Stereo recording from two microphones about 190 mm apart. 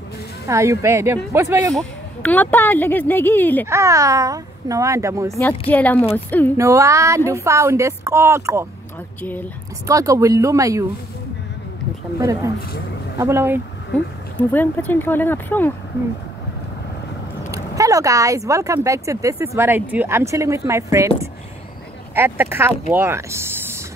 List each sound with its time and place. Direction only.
0.5 s speech: 15° right (ahead or behind)
1.7 s speech: 5° left (ahead or behind)
3.6 s speech: 15° right (ahead or behind)
5.7 s speech: 10° left (ahead or behind)
6.5 s speech: 15° right (ahead or behind)
9.2 s speech: 10° left (ahead or behind)
9.8 s speech: 15° right (ahead or behind)
12.2 s speech: 15° right (ahead or behind)
14.5 s speech: 10° left (ahead or behind)
17.5 s speech: 15° right (ahead or behind)